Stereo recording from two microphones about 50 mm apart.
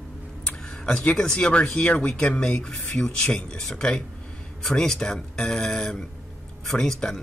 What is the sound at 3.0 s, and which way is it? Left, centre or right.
Speech, centre.